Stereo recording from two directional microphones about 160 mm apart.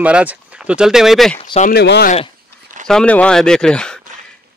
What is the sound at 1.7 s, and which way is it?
Speech, 85° left.